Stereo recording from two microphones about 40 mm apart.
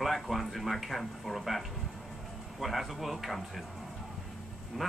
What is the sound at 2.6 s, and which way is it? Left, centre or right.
Speech, centre.